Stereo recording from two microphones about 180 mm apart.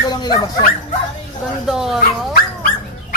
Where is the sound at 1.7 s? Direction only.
Centre (ahead or behind).